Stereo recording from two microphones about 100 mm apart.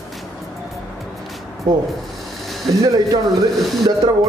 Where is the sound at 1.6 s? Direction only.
45° right (ahead or behind).